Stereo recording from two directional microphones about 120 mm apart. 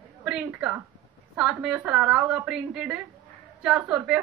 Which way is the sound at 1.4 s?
5° right (ahead or behind).